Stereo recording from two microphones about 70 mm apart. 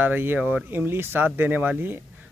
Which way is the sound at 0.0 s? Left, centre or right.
Right.